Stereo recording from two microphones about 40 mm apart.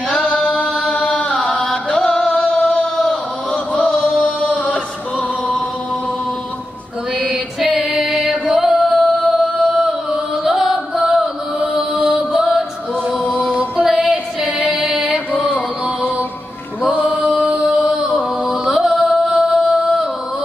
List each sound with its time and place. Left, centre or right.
0.1 s singing: left
0.9 s music: left
2.6 s music: left
4.0 s singing: left
7.2 s music: centre
8.5 s music: centre
11.6 s mantra: right
13.2 s music: left
13.6 s music: right
16.9 s mantra: right
17.2 s chant: right
17.6 s mantra: right
18.5 s music: centre